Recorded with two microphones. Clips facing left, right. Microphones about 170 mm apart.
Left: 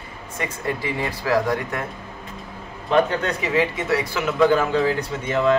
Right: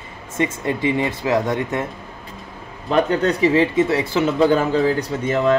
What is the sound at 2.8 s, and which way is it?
Speech, 35° right (ahead or behind).